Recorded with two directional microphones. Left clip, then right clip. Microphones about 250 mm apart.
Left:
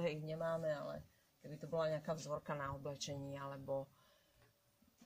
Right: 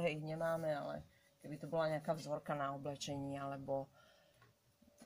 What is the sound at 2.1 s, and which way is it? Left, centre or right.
Speech, centre.